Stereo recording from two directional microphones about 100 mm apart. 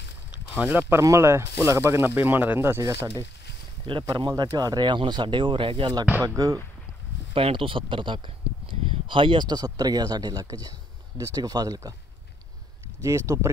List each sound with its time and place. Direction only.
0.3 s speech: 15° right (ahead or behind)
3.8 s speech: 55° right (ahead or behind)
6.2 s speech: 35° right (ahead or behind)
7.3 s speech: 65° right (ahead or behind); by 11.9 s 40° right (ahead or behind)
13.0 s speech: 35° right (ahead or behind)